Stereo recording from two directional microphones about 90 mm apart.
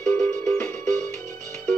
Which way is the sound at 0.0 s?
20° left (ahead or behind).